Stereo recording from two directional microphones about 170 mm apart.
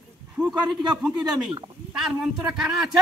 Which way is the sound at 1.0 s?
5° right (ahead or behind).